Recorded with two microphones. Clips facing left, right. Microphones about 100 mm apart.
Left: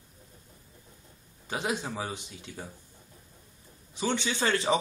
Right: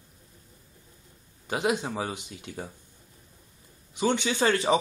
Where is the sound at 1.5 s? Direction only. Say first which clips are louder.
Right 5 dB; 10° right (ahead or behind).